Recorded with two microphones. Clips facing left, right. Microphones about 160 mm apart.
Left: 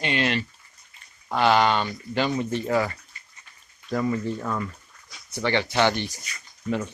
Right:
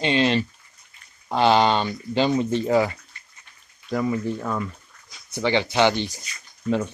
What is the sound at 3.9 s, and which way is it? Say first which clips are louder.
Speech: right 1 dB; 5° right (ahead or behind).